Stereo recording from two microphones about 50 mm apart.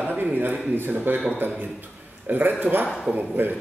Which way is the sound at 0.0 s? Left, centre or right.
Right.